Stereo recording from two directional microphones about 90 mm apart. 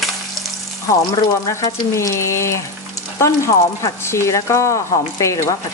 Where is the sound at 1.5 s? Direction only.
35° left (ahead or behind).